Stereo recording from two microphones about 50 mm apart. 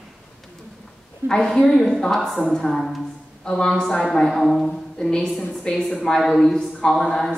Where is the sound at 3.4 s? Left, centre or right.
Centre.